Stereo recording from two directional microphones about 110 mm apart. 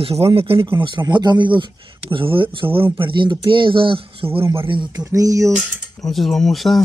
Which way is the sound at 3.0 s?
50° right (ahead or behind).